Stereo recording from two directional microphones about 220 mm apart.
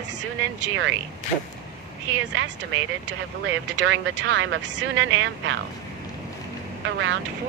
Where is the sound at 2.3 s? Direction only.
55° right (ahead or behind).